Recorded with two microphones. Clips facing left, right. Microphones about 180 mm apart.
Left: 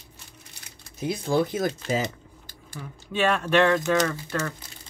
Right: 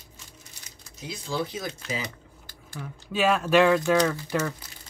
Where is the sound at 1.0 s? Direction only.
55° left (ahead or behind).